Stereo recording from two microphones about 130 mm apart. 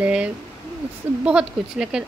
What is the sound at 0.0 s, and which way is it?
A woman's voice, 10° right (ahead or behind).